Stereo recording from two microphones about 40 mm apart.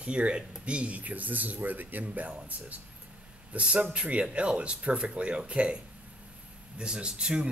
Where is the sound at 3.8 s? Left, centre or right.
Right.